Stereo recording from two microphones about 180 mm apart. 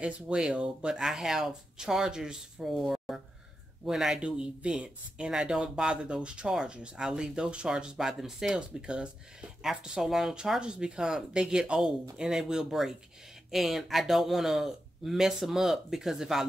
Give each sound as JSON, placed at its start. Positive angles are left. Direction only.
{"t": 0.0, "sound": "speech", "side_deg": -5}